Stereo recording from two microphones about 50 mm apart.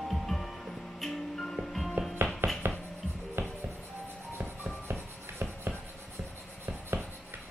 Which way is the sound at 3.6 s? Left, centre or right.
Right.